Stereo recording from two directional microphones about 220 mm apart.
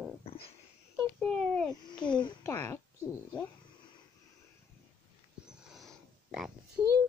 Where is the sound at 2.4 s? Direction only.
10° left (ahead or behind).